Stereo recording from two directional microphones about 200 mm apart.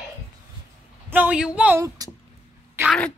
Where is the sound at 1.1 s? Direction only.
5° right (ahead or behind).